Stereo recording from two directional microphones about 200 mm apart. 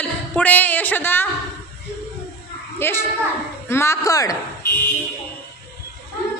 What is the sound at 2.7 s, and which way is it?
A child's voice, 10° left (ahead or behind).